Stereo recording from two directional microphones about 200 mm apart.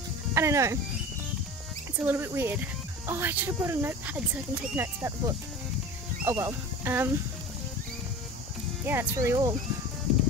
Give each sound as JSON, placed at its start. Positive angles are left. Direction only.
{"t": 0.3, "sound": "speech", "side_deg": -15}
{"t": 2.0, "sound": "speech", "side_deg": -10}
{"t": 8.8, "sound": "speech", "side_deg": -15}